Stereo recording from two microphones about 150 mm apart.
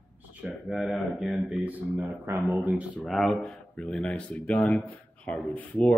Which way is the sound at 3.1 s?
Centre (ahead or behind).